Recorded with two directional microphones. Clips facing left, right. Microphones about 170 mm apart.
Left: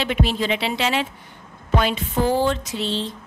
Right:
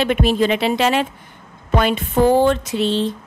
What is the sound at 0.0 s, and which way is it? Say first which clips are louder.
A woman's voice: right 6 dB; 50° right (ahead or behind).